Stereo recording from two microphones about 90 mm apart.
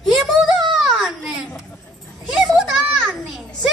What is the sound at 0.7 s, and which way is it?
A child's voice, 5° right (ahead or behind).